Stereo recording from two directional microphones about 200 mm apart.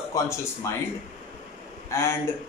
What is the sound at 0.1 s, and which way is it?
Speech, 15° left (ahead or behind).